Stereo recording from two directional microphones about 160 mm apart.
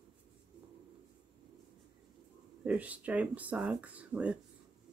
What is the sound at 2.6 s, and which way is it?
Speech, 10° right (ahead or behind).